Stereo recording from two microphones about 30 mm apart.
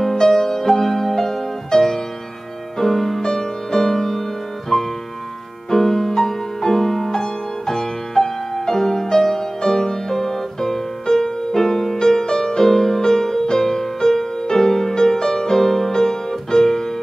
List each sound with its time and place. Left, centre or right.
0.0 s music: centre
5.7 s music: centre